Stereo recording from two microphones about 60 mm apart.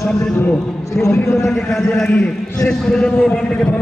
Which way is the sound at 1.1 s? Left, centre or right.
Left.